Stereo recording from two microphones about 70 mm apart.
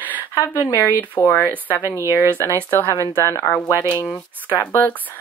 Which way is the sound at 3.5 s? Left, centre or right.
Left.